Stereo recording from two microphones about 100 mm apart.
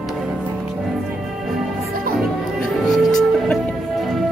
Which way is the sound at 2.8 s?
Centre (ahead or behind).